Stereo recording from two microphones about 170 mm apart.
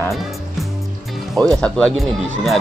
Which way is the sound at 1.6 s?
5° left (ahead or behind).